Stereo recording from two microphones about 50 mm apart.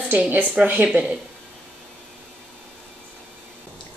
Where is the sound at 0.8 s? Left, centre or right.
Centre.